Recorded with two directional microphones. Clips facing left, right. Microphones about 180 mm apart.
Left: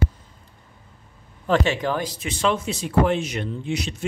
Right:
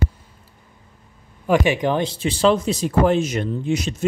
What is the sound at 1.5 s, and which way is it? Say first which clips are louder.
Speech: right 3 dB; 15° right (ahead or behind).